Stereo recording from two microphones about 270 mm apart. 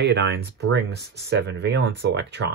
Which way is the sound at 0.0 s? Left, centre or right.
Right.